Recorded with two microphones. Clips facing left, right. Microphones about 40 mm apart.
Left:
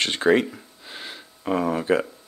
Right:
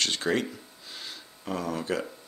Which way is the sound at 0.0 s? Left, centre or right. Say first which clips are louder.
Left 8 dB; left.